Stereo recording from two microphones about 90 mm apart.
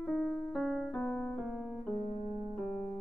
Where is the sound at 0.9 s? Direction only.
20° left (ahead or behind).